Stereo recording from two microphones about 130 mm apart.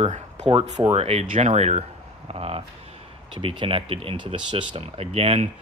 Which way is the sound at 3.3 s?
40° right (ahead or behind).